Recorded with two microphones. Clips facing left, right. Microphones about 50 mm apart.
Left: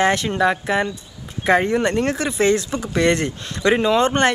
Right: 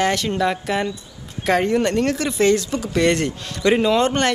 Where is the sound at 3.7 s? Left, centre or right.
Centre.